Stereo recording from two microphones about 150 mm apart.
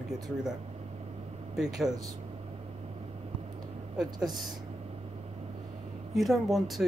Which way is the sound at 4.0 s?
25° right (ahead or behind).